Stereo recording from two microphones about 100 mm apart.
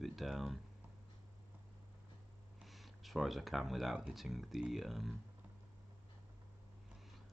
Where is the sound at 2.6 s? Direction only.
Centre (ahead or behind).